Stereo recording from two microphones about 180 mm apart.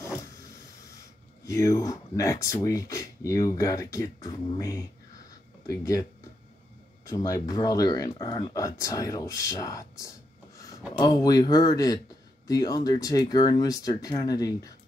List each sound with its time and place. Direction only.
1.4 s speech: 20° left (ahead or behind)
7.1 s speech: 20° left (ahead or behind)